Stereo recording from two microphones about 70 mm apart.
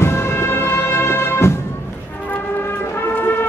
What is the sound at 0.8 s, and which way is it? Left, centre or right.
Music, left.